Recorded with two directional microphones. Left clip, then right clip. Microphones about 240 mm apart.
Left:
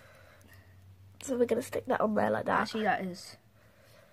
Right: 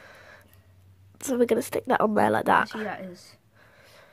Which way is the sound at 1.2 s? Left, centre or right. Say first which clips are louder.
Right 6 dB; right.